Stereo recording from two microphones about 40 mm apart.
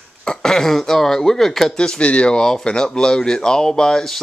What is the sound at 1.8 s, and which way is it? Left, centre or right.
Speech, left.